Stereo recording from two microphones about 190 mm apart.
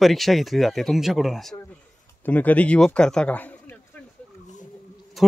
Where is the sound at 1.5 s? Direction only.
10° left (ahead or behind).